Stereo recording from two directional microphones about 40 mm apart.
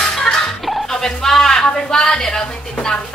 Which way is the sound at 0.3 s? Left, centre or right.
Centre.